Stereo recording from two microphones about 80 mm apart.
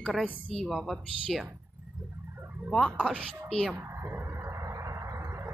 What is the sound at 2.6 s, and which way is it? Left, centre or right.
Speech, centre.